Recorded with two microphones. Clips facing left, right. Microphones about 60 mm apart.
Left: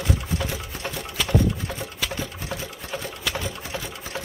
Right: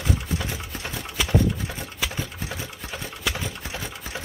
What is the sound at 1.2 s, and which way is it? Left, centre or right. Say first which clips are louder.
Sewing machine: even; centre.